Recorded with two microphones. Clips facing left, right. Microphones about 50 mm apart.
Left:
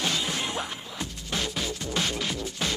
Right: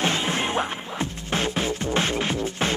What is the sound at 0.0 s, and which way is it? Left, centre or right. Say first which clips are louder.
Music: right 5 dB; right.